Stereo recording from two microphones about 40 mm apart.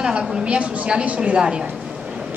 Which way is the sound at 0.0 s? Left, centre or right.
Centre.